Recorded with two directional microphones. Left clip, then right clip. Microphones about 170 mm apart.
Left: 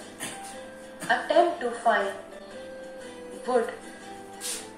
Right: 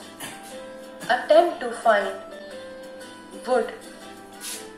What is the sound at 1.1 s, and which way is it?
Speech, 45° right (ahead or behind).